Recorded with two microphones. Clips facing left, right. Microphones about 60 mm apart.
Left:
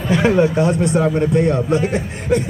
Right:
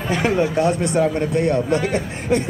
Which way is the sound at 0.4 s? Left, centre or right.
Centre.